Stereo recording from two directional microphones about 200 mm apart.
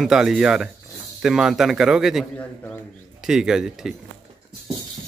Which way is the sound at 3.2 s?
5° right (ahead or behind).